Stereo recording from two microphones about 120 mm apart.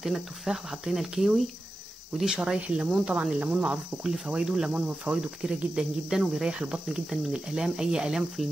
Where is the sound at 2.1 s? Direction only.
5° right (ahead or behind).